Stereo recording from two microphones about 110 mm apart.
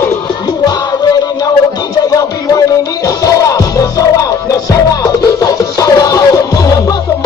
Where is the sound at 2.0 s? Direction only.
35° left (ahead or behind).